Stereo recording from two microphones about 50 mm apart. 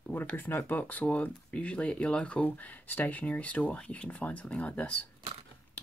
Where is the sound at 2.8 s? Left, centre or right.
Left.